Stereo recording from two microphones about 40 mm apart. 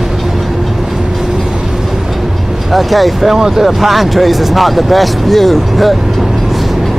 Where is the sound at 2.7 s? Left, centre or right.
Centre.